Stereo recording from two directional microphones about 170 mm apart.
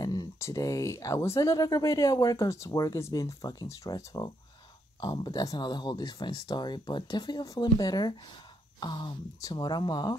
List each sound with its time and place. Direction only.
0.0 s speech: 20° left (ahead or behind)